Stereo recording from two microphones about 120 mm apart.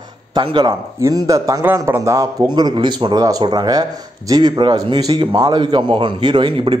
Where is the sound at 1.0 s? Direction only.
30° right (ahead or behind).